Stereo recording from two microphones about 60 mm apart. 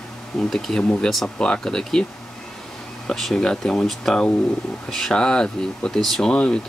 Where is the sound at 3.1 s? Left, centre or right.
Centre.